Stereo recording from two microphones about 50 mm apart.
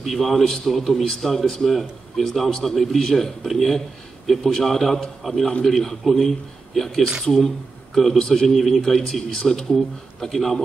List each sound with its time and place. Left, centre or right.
0.0 s a man's voice: centre